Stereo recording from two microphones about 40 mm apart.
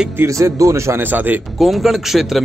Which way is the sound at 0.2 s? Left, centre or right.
Right.